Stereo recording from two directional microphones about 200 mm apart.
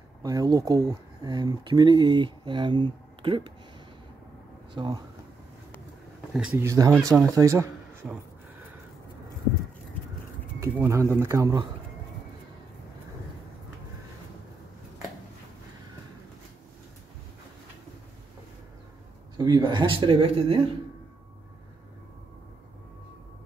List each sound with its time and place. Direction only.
0.2 s speech: 20° right (ahead or behind)
4.7 s speech: 20° right (ahead or behind)
6.3 s speech: 5° right (ahead or behind)
10.6 s speech: 15° right (ahead or behind)
19.3 s speech: 20° right (ahead or behind)